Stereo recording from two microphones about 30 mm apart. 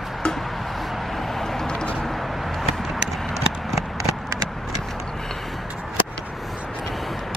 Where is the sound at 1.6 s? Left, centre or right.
Left.